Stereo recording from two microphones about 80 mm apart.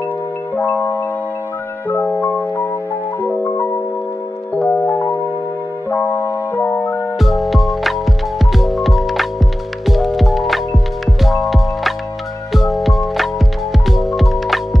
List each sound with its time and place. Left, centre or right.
0.6 s marimba: left
1.9 s music: left
4.6 s music: centre
7.2 s music: centre